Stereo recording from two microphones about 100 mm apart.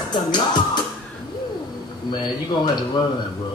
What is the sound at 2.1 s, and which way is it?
Speech, 50° left (ahead or behind).